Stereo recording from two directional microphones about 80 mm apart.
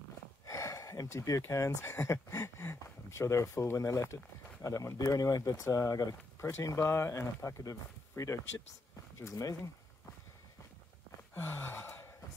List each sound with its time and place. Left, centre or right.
0.5 s a sound: left
1.5 s speech: left
11.3 s gasp: left